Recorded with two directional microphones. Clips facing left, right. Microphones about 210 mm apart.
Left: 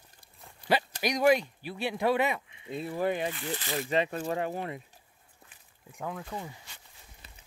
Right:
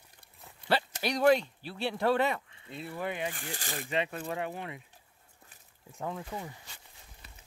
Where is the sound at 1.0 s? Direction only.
10° left (ahead or behind).